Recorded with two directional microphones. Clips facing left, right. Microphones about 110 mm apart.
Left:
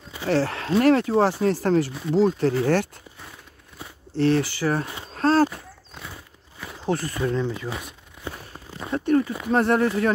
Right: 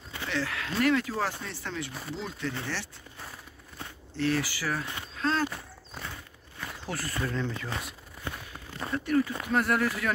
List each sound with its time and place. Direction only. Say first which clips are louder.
0.3 s speech: left 11 dB; 35° left (ahead or behind)
1.5 s speech: left 16 dB; 40° left (ahead or behind)
2.6 s speech: left 15 dB; 50° left (ahead or behind)
4.1 s speech: left 8 dB; 30° left (ahead or behind)
5.1 s speech: left 10 dB; 40° left (ahead or behind)
5.5 s a sound: left 1 dB; 5° left (ahead or behind)
6.9 s speech: left 9 dB; 20° left (ahead or behind)
8.2 s a sound: left 3 dB; 15° left (ahead or behind)
8.9 s a sound: left 6 dB; 30° left (ahead or behind)
9.5 s speech: left 9 dB; 30° left (ahead or behind)